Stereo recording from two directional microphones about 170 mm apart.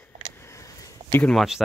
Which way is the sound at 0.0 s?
15° left (ahead or behind).